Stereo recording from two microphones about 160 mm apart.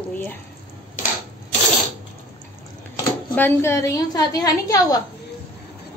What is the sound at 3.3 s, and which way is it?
A woman's voice, 15° left (ahead or behind).